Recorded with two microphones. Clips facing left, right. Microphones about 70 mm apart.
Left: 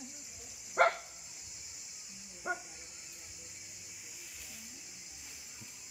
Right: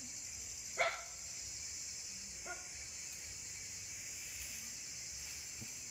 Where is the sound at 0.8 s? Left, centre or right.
Left.